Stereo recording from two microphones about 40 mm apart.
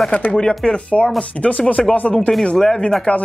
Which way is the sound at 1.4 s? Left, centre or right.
Left.